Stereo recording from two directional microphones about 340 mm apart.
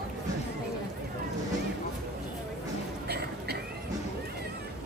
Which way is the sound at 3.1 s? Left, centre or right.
Right.